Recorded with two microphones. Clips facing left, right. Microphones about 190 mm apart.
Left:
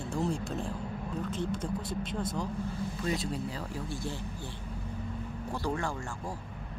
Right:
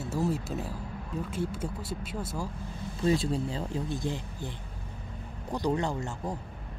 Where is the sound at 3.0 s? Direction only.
30° right (ahead or behind).